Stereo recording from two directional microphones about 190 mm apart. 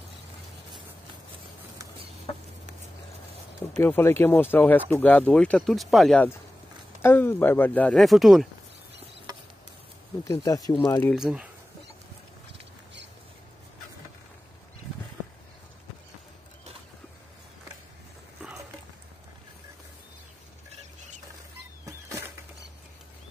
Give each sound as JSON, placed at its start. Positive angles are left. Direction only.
{"t": 3.8, "sound": "speech", "side_deg": 15}
{"t": 10.2, "sound": "speech", "side_deg": 15}
{"t": 11.1, "sound": "speech", "side_deg": -5}